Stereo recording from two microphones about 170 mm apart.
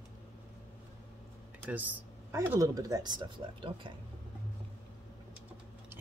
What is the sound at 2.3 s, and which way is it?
Speech, 15° right (ahead or behind).